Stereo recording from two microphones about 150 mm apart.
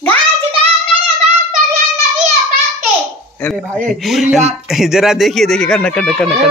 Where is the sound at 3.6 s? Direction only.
10° right (ahead or behind).